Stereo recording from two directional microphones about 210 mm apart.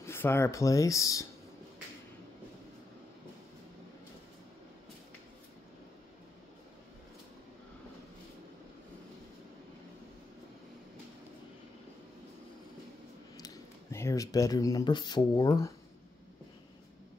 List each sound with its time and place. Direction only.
0.0 s speech: 10° left (ahead or behind)
13.9 s speech: 15° left (ahead or behind)